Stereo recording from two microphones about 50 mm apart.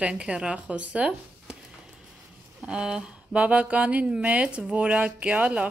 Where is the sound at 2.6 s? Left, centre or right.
Centre.